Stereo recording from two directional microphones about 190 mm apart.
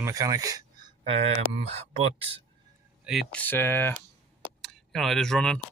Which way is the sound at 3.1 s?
Centre (ahead or behind).